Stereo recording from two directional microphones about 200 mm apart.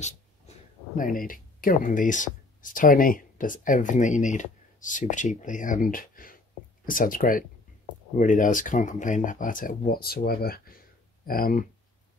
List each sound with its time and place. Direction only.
0.0 s speech: 40° left (ahead or behind)